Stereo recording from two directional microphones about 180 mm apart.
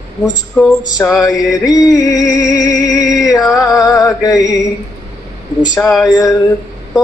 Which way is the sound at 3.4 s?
15° left (ahead or behind).